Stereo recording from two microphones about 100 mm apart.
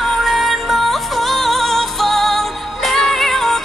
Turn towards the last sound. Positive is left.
turn(degrees=0)  # may be behind; listen again after turning